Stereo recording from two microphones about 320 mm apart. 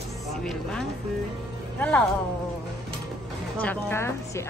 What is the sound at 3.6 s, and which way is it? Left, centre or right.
Speech, centre.